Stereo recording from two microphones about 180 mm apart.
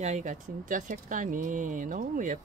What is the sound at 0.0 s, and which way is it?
Speech, 40° right (ahead or behind).